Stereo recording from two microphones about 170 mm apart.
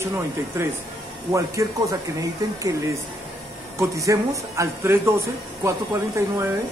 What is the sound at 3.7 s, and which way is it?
A man's voice, 20° right (ahead or behind).